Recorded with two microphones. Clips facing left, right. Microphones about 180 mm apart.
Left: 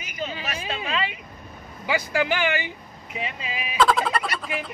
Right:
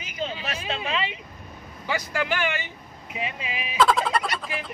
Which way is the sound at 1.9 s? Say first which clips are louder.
Left 3 dB; 5° left (ahead or behind).